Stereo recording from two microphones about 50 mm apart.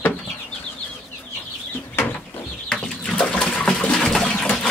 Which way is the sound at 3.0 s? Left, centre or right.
Left.